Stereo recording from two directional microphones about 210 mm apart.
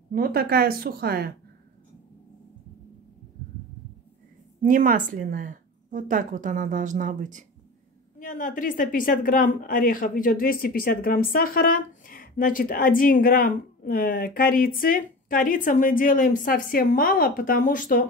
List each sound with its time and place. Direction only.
0.1 s speech: 45° right (ahead or behind)
4.6 s speech: 40° right (ahead or behind)
8.2 s a woman's voice: 40° left (ahead or behind)